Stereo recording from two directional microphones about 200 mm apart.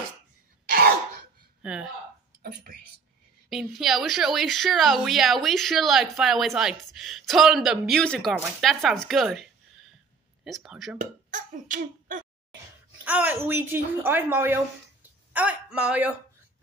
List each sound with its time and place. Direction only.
0.7 s cough: 50° right (ahead or behind)
1.6 s speech: 5° right (ahead or behind)
2.4 s speech: 50° right (ahead or behind)
3.4 s speech: centre (ahead or behind)
11.0 s a child's voice: 40° right (ahead or behind)
13.0 s a woman's voice: 10° right (ahead or behind)